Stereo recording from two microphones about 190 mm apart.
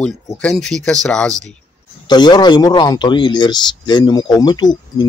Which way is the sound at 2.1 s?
20° left (ahead or behind).